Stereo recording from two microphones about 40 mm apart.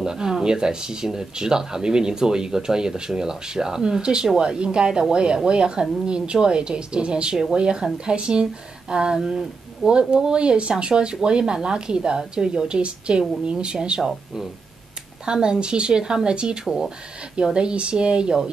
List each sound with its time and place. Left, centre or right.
0.0 s speech: centre
17.6 s speech: right